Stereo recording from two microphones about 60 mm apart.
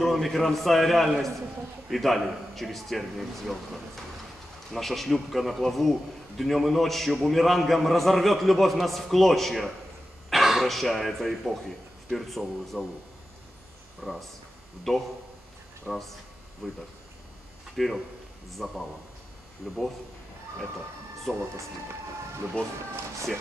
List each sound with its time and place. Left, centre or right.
0.0 s a man's voice: centre
14.0 s a man's voice: centre
21.3 s speech: centre
22.6 s speech: centre